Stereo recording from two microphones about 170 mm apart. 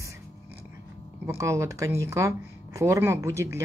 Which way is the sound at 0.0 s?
15° right (ahead or behind).